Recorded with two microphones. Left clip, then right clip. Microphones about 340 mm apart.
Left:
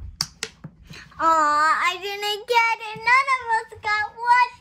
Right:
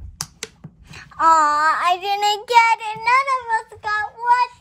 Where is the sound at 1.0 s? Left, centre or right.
Right.